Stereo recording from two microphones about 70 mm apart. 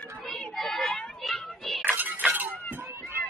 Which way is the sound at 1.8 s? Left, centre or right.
Right.